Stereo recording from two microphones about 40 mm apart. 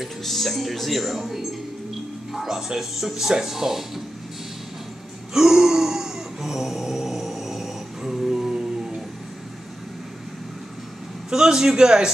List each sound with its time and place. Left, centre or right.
0.2 s speech: centre
5.3 s a sound: centre
11.2 s a man's voice: centre